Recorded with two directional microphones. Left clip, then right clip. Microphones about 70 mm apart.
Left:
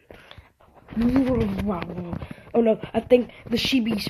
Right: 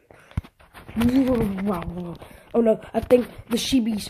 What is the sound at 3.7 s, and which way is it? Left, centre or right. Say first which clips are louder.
Speech: even; centre.